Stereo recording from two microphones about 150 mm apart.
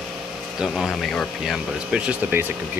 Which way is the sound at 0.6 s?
Centre (ahead or behind).